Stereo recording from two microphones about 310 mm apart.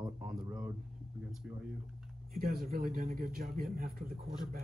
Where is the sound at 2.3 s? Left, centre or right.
Right.